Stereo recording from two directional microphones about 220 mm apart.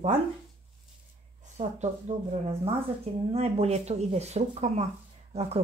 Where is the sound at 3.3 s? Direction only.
25° right (ahead or behind).